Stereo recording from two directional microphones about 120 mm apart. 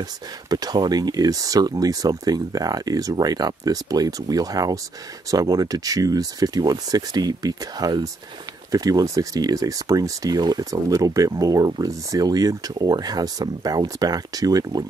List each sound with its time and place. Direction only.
0.0 s speech: 35° right (ahead or behind)